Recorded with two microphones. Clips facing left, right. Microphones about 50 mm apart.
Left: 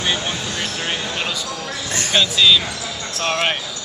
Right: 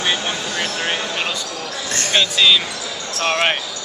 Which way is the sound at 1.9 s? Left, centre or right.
Centre.